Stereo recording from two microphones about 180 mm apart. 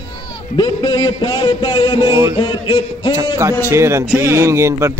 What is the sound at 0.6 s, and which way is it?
A man's voice, 25° left (ahead or behind).